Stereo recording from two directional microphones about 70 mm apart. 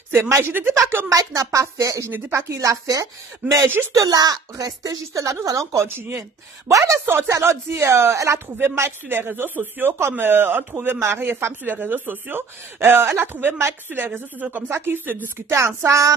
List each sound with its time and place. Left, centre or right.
0.5 s speech: right
1.0 s speech: right
2.0 s speech: right
2.5 s speech: right
3.4 s speech: right
3.9 s speech: right
5.8 s speech: right
6.7 s speech: right